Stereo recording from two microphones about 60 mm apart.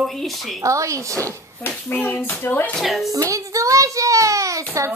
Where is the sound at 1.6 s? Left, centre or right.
Left.